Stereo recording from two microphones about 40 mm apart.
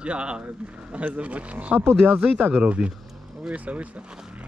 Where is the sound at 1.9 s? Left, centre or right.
Right.